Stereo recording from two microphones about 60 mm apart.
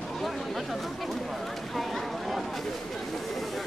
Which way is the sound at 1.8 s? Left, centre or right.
Centre.